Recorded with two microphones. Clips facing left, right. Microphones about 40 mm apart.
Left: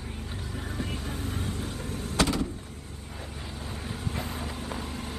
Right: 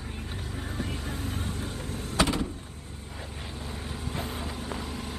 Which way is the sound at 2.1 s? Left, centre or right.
Right.